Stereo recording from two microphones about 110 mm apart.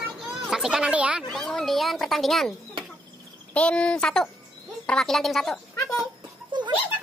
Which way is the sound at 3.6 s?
10° left (ahead or behind).